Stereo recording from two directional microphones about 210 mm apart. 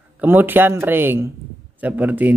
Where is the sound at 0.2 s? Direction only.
10° right (ahead or behind).